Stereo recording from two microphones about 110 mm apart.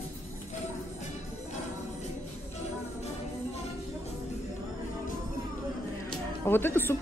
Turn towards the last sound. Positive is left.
turn(degrees=20)  # may be behind; listen again after turning